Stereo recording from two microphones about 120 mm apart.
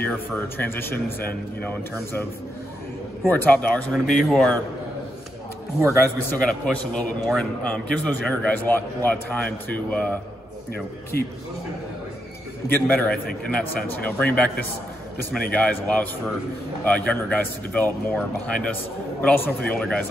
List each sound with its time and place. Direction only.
0.0 s a man's voice: 20° left (ahead or behind)
3.3 s a man's voice: 15° left (ahead or behind)
6.0 s a man's voice: 10° left (ahead or behind)
12.6 s a man's voice: 15° left (ahead or behind)